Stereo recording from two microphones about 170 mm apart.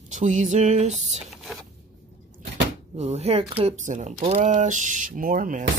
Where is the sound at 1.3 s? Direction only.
Centre (ahead or behind).